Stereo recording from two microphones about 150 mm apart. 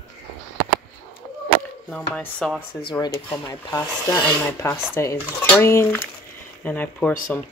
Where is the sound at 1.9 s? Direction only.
5° left (ahead or behind).